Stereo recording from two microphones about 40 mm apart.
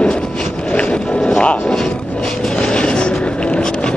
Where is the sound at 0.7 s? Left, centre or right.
Left.